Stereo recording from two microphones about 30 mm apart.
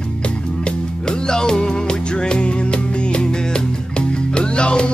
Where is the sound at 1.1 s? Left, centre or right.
Left.